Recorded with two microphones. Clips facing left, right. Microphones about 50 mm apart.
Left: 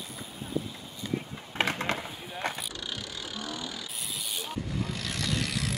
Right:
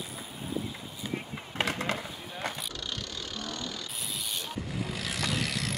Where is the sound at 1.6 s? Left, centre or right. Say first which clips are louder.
Left 1 dB; left.